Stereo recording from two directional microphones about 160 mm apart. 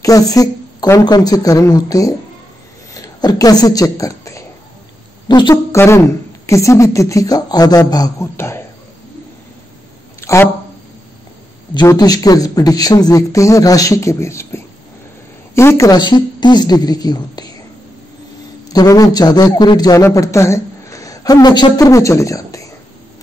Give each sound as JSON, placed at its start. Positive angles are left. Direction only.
{"t": 0.0, "sound": "speech", "side_deg": 20}
{"t": 2.9, "sound": "a sound", "side_deg": 25}
{"t": 5.3, "sound": "a man's voice", "side_deg": 25}
{"t": 10.2, "sound": "speech", "side_deg": 15}
{"t": 11.7, "sound": "speech", "side_deg": 25}
{"t": 18.7, "sound": "a woman's voice", "side_deg": 25}